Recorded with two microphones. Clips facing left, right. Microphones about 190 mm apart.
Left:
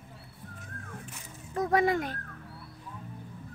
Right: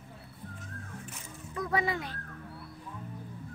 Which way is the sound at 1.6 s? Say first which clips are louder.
Left 6 dB; 45° left (ahead or behind).